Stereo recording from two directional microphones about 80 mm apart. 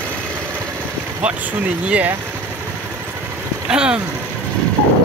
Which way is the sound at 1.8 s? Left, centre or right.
Centre.